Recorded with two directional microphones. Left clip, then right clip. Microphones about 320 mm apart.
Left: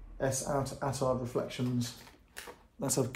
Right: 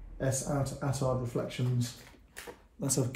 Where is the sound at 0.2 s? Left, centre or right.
Centre.